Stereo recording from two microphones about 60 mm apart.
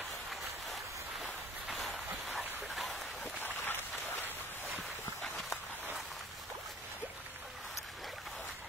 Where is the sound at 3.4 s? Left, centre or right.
Left.